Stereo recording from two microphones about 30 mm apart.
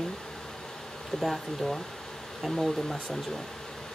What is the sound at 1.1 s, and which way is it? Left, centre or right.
Speech, centre.